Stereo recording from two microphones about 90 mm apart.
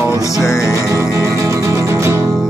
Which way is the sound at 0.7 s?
35° right (ahead or behind).